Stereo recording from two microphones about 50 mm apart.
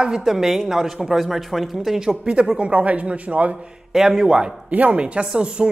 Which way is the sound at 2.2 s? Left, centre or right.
Centre.